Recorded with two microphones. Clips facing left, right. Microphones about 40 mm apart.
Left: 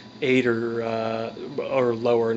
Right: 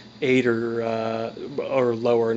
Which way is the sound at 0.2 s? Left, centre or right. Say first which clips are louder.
Right 1 dB; centre.